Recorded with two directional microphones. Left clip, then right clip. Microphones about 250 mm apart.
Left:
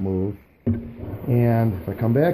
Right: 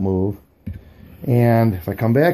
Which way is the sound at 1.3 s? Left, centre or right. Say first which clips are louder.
Right 5 dB; centre.